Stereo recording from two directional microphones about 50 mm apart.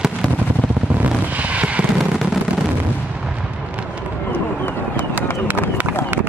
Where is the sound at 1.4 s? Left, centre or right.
Right.